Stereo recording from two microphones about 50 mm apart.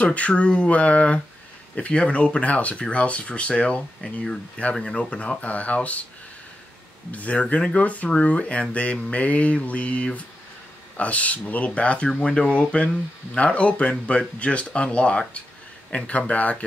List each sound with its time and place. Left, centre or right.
0.0 s speech: left
7.1 s speech: left